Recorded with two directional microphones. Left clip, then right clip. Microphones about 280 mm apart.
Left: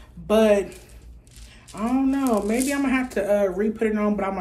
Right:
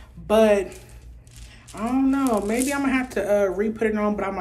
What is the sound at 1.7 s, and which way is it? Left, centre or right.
Speech, centre.